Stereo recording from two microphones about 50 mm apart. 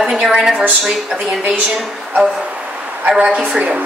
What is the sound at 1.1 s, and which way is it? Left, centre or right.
Speech, right.